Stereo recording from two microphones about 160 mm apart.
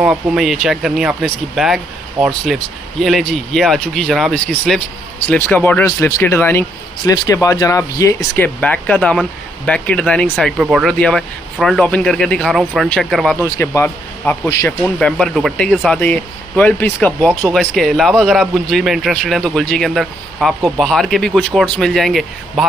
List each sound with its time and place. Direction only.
0.0 s speech: 5° right (ahead or behind); by 8.5 s 20° left (ahead or behind)
8.5 s speech: 5° left (ahead or behind)
13.4 s a man's voice: 15° left (ahead or behind)